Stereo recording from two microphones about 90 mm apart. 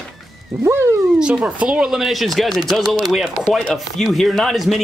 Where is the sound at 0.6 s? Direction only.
30° right (ahead or behind).